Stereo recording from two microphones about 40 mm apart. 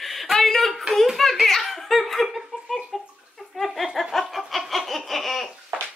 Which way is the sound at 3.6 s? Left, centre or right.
Centre.